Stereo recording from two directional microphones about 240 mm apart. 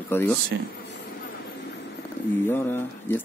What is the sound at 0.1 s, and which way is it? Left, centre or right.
Speech, centre.